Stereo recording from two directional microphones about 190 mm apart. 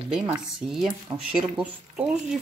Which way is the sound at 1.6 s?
5° right (ahead or behind).